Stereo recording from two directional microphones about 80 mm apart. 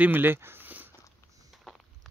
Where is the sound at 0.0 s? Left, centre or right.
Right.